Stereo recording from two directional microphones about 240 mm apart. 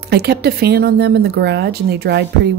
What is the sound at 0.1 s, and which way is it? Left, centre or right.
Speech, right.